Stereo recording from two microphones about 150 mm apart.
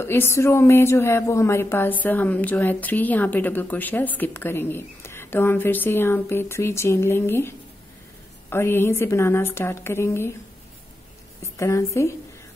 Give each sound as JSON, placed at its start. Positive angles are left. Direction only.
{"t": 0.0, "sound": "a woman's voice", "side_deg": 15}
{"t": 11.5, "sound": "a woman's voice", "side_deg": 20}